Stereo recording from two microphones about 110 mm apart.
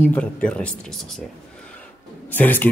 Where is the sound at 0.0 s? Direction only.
10° left (ahead or behind).